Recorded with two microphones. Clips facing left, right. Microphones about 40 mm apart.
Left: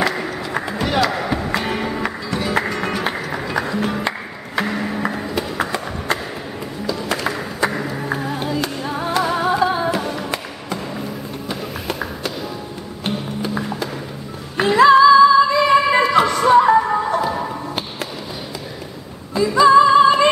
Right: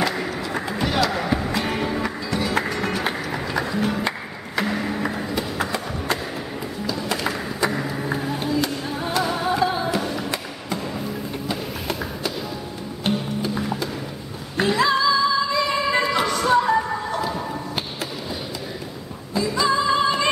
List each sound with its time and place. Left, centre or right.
0.0 s skateboard: centre
1.5 s music: centre
9.6 s music: centre
14.6 s music: left
19.3 s music: centre